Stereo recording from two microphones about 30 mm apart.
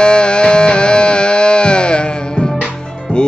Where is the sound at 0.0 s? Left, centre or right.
Left.